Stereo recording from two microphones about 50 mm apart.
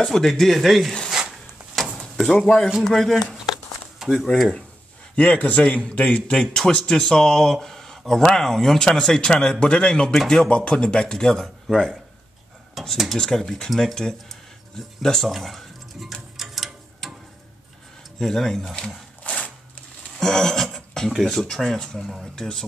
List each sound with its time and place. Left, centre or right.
0.0 s speech: centre
2.0 s drawer open or close: centre
2.4 s speech: centre
5.1 s speech: left
6.3 s speech: centre
12.9 s speech: centre
13.2 s speech: centre
15.2 s a sound: centre
18.2 s speech: centre
19.2 s a sound: left
20.2 s speech: centre